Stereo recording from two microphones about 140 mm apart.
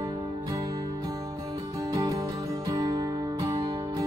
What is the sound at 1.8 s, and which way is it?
Music, 25° right (ahead or behind).